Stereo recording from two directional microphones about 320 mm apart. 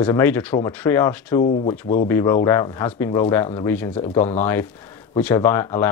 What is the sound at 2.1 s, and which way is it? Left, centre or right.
Speech, centre.